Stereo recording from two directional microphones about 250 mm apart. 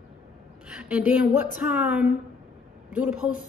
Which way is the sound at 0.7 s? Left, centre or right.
Centre.